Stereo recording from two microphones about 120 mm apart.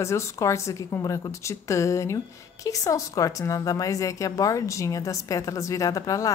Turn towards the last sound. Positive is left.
turn(degrees=30)  # may be behind; listen again after turning